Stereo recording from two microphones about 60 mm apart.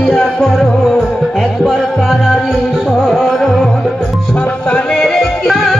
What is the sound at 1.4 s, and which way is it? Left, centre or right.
Music, centre.